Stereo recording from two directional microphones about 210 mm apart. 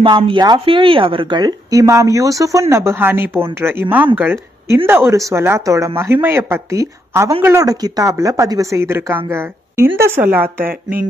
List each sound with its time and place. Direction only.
0.0 s a woman's voice: 20° right (ahead or behind)